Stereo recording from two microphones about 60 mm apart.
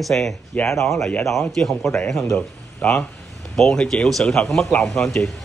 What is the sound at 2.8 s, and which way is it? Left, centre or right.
Speech, left.